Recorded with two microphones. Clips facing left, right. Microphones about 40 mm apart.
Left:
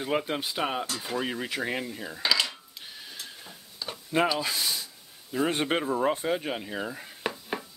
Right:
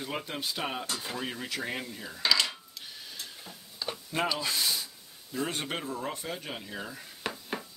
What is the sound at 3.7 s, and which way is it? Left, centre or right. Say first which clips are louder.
Tick-tock: right 1 dB; centre.